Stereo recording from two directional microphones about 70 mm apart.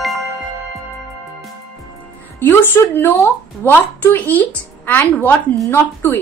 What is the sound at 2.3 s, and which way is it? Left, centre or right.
A woman's voice, left.